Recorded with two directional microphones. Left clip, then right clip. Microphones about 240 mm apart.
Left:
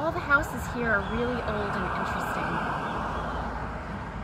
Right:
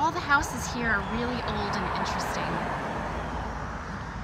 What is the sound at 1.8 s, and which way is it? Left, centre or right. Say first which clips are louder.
Speech: even; right.